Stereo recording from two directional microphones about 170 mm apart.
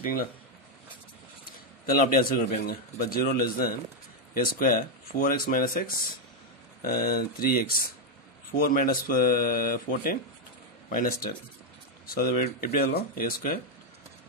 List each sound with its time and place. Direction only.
0.0 s speech: 60° left (ahead or behind)
1.9 s speech: 55° left (ahead or behind)